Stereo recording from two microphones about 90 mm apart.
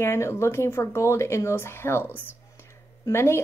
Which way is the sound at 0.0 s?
30° left (ahead or behind).